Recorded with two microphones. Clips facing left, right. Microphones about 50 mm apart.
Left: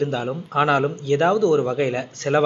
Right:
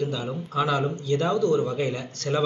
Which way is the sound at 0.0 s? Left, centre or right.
Left.